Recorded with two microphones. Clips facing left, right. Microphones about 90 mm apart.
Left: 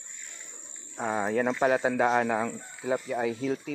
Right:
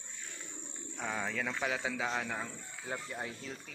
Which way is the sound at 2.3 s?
85° left.